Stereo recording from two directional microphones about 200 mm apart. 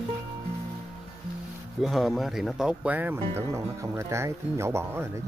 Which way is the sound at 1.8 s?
Centre (ahead or behind).